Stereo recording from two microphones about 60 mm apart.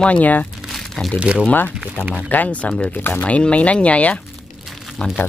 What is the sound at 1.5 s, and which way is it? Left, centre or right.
Speech, left.